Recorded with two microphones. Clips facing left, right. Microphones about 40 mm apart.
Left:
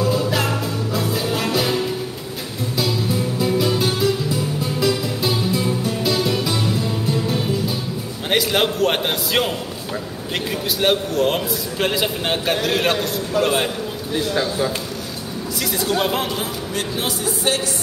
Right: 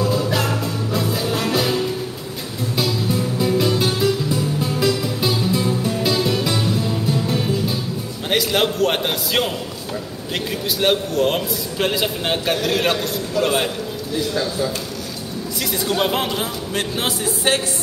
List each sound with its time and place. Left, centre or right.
0.0 s music: centre
3.3 s music: centre
8.3 s a man's voice: centre
10.8 s a man's voice: centre
14.1 s a man's voice: left
15.8 s a man's voice: centre
16.7 s speech: right